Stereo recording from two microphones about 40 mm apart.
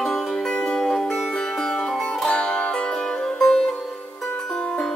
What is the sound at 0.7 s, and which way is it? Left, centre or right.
Music, centre.